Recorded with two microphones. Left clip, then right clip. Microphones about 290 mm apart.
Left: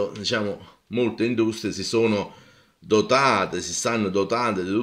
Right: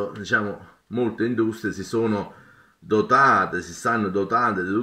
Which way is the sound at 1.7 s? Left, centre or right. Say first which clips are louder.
Left 1 dB; centre.